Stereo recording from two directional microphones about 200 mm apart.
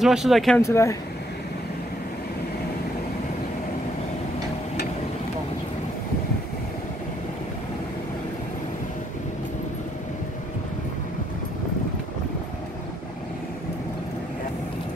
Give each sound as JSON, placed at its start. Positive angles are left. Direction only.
{"t": 0.0, "sound": "speech", "side_deg": 0}
{"t": 0.6, "sound": "speech", "side_deg": 15}